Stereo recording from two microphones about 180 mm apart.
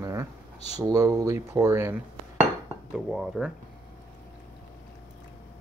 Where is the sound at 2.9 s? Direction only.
5° right (ahead or behind).